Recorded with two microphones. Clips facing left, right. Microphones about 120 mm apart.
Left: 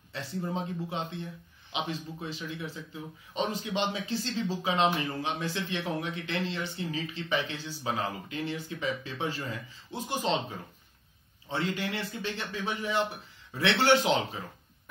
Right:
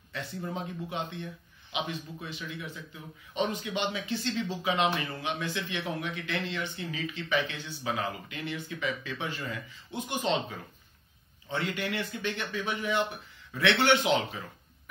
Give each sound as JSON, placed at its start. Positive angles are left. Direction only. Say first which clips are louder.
{"t": 0.4, "sound": "speech", "louder": "left 4 dB", "side_deg": 30}
{"t": 11.4, "sound": "speech", "louder": "left 1 dB", "side_deg": 30}